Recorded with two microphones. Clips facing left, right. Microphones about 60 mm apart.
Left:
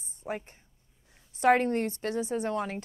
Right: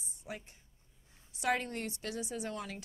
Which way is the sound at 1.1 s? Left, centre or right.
Left.